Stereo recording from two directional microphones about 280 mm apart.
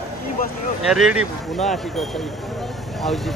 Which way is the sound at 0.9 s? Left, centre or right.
Centre.